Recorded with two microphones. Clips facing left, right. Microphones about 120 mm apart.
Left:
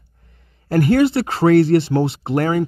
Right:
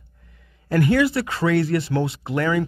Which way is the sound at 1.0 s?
30° left (ahead or behind).